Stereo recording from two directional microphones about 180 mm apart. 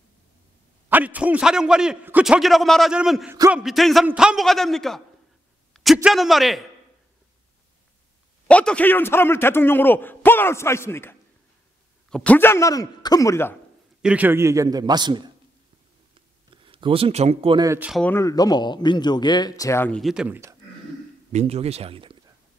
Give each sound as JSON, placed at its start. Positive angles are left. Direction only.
{"t": 0.8, "sound": "a man's voice", "side_deg": -10}
{"t": 8.5, "sound": "a man's voice", "side_deg": 5}
{"t": 14.0, "sound": "a man's voice", "side_deg": -10}
{"t": 16.4, "sound": "speech", "side_deg": -30}
{"t": 17.6, "sound": "speech", "side_deg": -5}
{"t": 18.0, "sound": "speech", "side_deg": 15}
{"t": 20.0, "sound": "a man's voice", "side_deg": -5}
{"t": 21.3, "sound": "speech", "side_deg": -35}